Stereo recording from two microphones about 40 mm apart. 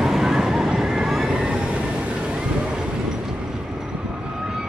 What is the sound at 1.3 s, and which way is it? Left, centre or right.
Vehicle, right.